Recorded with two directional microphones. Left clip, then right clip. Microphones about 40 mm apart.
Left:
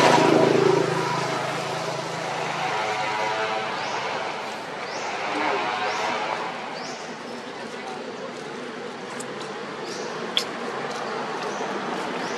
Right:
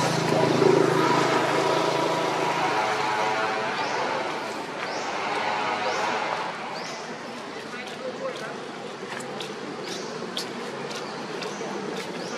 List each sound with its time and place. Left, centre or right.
0.0 s vehicle: left
0.4 s vehicle: centre
0.9 s vehicle: centre
2.8 s vehicle: centre